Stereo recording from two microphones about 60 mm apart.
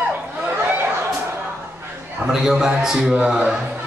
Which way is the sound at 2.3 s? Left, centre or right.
Centre.